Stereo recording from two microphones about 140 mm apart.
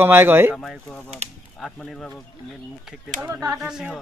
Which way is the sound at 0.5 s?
10° left (ahead or behind).